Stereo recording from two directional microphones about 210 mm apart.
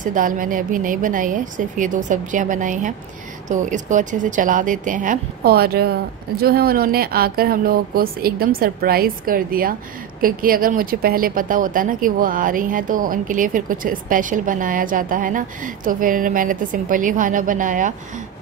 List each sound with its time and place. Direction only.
0.0 s a woman's voice: 40° right (ahead or behind)